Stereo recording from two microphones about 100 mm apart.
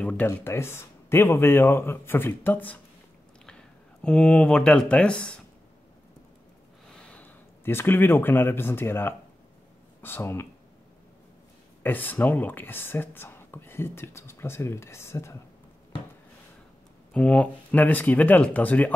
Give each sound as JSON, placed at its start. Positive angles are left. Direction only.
{"t": 0.3, "sound": "speech", "side_deg": 25}
{"t": 7.0, "sound": "speech", "side_deg": 15}
{"t": 11.8, "sound": "speech", "side_deg": 20}
{"t": 17.1, "sound": "speech", "side_deg": 10}